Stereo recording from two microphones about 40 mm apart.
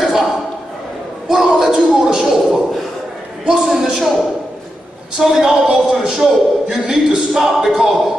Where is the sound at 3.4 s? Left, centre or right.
Centre.